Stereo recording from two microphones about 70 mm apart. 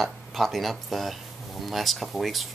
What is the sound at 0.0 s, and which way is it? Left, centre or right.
Speech, centre.